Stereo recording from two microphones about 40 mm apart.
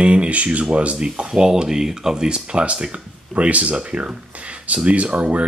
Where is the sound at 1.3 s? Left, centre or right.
Centre.